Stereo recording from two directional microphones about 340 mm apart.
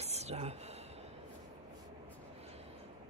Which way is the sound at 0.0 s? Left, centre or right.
Centre.